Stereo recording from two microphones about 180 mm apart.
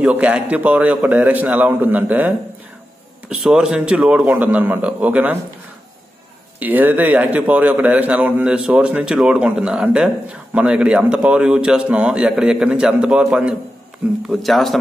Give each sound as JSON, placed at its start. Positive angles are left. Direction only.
{"t": 0.0, "sound": "a man's voice", "side_deg": -10}
{"t": 6.6, "sound": "a man's voice", "side_deg": -10}